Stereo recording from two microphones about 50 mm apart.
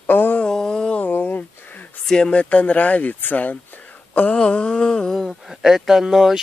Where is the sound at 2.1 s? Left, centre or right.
Left.